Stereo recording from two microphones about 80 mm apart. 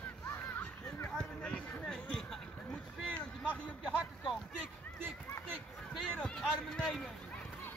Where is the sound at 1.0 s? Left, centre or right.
Centre.